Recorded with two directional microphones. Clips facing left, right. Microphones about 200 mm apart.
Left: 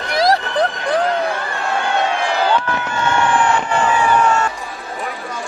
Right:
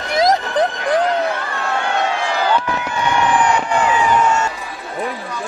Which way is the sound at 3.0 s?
15° right (ahead or behind).